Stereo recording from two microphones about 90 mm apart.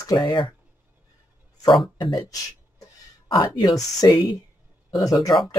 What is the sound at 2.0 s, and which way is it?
Speech, 55° left (ahead or behind).